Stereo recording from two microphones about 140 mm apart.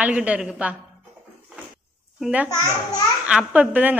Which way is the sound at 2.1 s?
5° right (ahead or behind).